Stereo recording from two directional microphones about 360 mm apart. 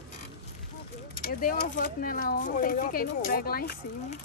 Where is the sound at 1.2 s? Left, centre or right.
Left.